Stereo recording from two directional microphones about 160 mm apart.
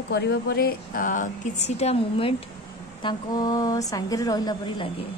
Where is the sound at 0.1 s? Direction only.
90° left; by 1.3 s 55° left (ahead or behind).